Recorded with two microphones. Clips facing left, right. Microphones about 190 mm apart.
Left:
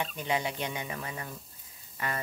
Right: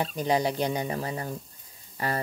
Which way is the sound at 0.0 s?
35° right (ahead or behind).